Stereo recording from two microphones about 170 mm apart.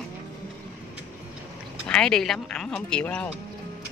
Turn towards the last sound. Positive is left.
turn(degrees=5)  # may be behind; listen again after turning